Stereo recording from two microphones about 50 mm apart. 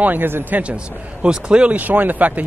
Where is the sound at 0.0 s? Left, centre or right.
Right.